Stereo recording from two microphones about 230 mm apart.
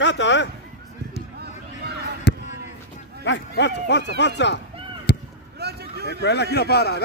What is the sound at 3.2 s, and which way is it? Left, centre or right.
Speech, left.